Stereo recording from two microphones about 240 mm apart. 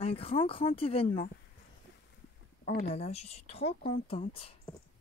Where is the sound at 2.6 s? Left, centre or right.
Left.